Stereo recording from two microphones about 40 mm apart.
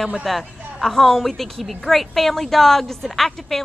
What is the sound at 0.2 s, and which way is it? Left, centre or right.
A woman's voice, centre.